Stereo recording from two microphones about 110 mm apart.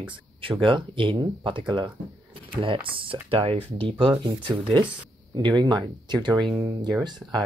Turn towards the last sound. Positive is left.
turn(degrees=-40)  # may be behind; listen again after turning